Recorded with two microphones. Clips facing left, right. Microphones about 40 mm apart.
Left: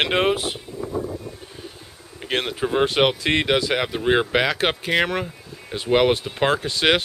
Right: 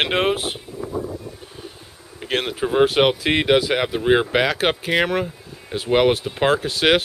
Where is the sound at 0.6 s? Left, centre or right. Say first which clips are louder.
Even; centre.